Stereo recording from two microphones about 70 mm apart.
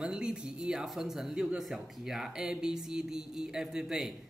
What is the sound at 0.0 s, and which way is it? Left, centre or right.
Speech, centre.